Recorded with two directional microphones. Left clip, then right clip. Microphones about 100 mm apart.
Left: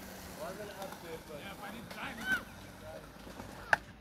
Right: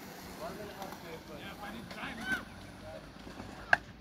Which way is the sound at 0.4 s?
15° left (ahead or behind).